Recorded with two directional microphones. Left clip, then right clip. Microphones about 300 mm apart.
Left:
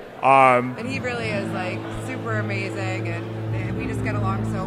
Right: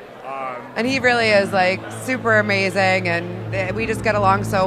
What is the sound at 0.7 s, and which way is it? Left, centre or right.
Speech, right.